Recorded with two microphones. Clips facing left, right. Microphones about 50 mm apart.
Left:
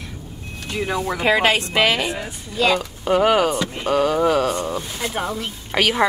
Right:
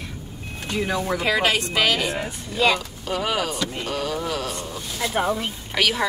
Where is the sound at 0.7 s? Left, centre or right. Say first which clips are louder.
Left 1 dB; centre.